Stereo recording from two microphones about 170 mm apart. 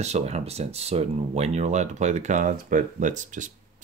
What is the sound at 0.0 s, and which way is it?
Speech, 40° right (ahead or behind).